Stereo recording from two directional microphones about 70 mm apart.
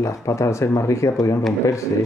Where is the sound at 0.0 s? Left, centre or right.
Left.